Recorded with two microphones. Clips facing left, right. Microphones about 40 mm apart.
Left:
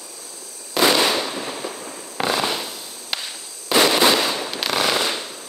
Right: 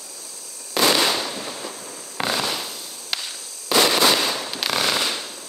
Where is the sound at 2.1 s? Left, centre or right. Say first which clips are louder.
Left 2 dB; centre.